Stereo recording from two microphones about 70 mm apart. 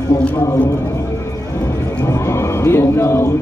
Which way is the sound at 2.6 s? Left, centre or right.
Left.